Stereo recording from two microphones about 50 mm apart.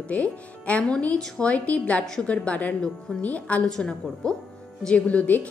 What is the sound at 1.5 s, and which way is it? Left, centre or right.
A woman's voice, left.